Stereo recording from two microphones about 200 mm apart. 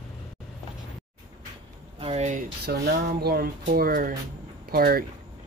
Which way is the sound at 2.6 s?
55° right (ahead or behind).